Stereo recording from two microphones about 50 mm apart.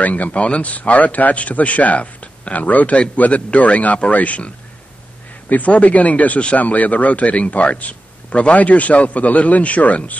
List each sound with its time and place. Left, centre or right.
0.0 s speech: left
5.5 s speech: left